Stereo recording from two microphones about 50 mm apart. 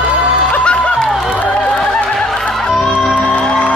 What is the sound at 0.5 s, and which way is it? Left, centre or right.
Music, left.